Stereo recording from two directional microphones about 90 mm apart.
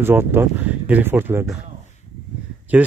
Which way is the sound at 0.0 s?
25° right (ahead or behind).